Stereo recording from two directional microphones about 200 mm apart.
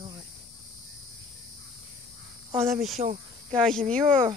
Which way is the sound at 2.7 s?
Centre (ahead or behind).